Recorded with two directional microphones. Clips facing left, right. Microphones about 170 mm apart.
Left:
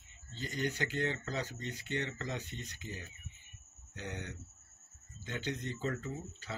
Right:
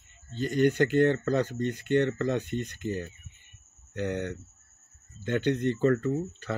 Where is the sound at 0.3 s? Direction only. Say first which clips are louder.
Right 13 dB; 55° right (ahead or behind).